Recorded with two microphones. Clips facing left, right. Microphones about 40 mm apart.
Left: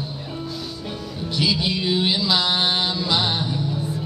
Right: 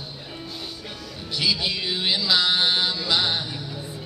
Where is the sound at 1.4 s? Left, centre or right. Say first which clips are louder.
Left 3 dB; centre.